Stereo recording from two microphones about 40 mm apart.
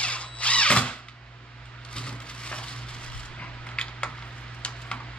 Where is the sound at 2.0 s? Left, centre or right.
Left.